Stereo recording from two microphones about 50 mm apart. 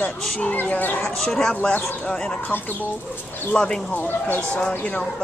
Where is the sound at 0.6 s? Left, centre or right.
Left.